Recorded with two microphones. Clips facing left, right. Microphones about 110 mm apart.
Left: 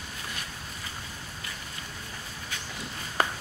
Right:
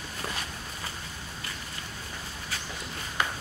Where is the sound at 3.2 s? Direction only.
40° left (ahead or behind).